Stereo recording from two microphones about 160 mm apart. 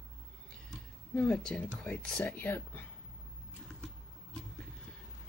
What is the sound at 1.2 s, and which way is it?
Speech, 5° left (ahead or behind).